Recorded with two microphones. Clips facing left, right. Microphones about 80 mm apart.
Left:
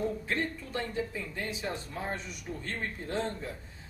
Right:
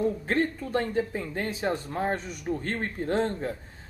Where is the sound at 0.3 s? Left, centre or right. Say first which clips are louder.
Right 7 dB; right.